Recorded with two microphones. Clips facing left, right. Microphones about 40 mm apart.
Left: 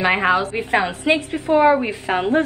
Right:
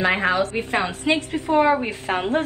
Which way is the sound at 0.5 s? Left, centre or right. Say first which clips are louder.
Left 3 dB; centre.